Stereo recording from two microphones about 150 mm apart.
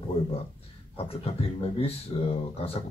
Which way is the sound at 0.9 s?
40° left (ahead or behind).